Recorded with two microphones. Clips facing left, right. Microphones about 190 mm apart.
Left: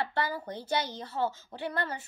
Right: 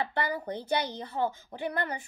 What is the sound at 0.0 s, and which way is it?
A woman's voice, 15° right (ahead or behind).